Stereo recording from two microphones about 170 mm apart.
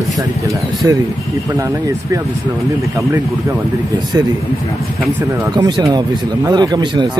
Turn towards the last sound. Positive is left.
turn(degrees=-25)  # may be behind; listen again after turning